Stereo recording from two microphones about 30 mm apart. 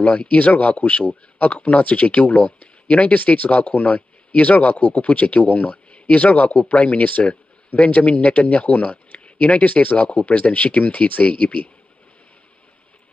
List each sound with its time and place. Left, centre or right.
0.2 s speech: left
5.9 s speech: left